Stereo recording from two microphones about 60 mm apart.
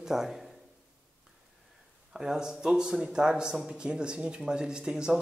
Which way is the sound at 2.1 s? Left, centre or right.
Centre.